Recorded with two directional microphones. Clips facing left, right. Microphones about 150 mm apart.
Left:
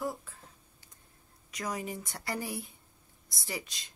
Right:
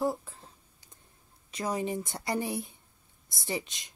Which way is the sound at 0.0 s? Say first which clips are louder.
Right 6 dB; 30° right (ahead or behind).